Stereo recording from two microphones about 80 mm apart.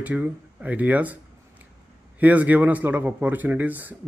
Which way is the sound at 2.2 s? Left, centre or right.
Centre.